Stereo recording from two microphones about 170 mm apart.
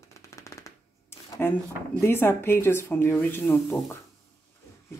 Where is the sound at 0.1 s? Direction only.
20° left (ahead or behind).